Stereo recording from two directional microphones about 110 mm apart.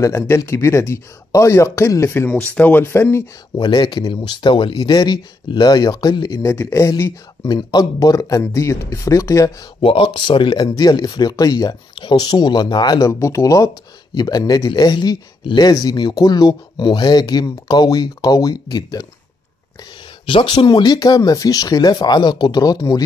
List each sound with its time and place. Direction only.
0.0 s speech: 30° left (ahead or behind)
2.2 s speech: 10° left (ahead or behind)
3.5 s speech: 40° left (ahead or behind)
6.4 s speech: 25° left (ahead or behind)
9.8 s speech: 55° left (ahead or behind)
20.2 s speech: 50° left (ahead or behind)